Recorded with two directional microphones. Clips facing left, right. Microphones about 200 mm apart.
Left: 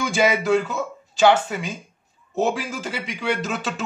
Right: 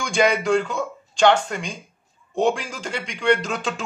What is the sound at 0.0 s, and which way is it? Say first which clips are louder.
Speech: even; 5° left (ahead or behind).